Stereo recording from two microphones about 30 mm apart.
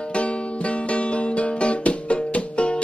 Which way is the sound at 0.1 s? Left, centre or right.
Left.